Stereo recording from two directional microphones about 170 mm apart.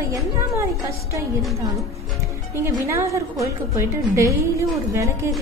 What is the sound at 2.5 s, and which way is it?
A woman's voice, 15° right (ahead or behind).